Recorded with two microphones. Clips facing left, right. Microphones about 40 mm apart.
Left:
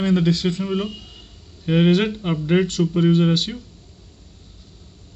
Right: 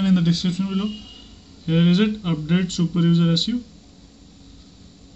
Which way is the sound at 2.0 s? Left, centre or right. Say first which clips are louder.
Right 1 dB; centre.